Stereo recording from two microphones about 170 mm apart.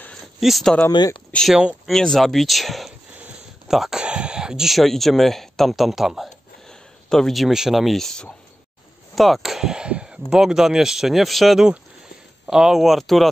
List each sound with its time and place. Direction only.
0.0 s a sound: centre (ahead or behind)
0.8 s speech: 25° left (ahead or behind)
1.3 s speech: centre (ahead or behind)